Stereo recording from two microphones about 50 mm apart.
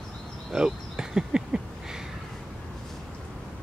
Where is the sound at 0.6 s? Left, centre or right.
Centre.